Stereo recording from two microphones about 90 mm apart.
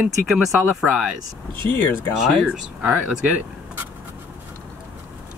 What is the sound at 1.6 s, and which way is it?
Speech, 25° left (ahead or behind).